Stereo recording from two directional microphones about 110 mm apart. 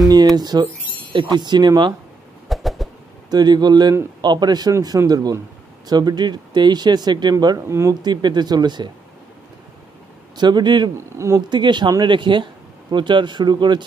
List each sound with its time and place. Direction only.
0.1 s speech: 40° right (ahead or behind)
2.5 s a sound: centre (ahead or behind)
3.3 s speech: 40° right (ahead or behind)
7.6 s speech: 25° right (ahead or behind)
8.0 s speech: 40° right (ahead or behind)
10.3 s speech: 40° right (ahead or behind)
11.1 s speech: 25° right (ahead or behind)
11.4 s speech: 45° right (ahead or behind)